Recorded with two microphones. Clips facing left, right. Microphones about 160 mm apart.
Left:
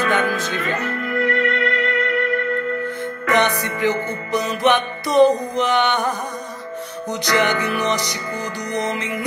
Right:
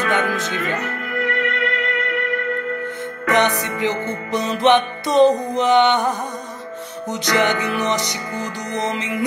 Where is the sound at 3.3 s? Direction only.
20° right (ahead or behind).